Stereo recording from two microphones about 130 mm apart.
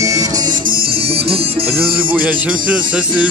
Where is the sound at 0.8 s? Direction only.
45° right (ahead or behind).